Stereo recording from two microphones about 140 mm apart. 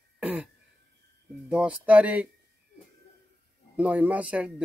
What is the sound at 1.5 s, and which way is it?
Speech, 10° right (ahead or behind).